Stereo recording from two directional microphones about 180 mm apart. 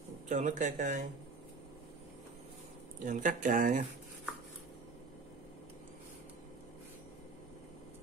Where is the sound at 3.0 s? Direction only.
45° right (ahead or behind).